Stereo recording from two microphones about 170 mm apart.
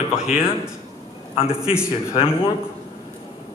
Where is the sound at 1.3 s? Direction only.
35° left (ahead or behind).